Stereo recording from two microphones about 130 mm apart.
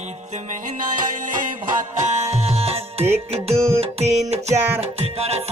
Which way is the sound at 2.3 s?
50° right (ahead or behind).